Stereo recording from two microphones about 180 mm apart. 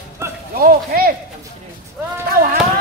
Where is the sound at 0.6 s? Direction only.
55° right (ahead or behind).